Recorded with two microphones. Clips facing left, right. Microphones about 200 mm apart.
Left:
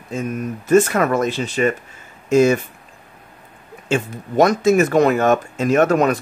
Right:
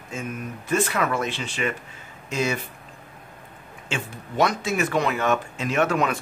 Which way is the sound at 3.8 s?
45° left (ahead or behind).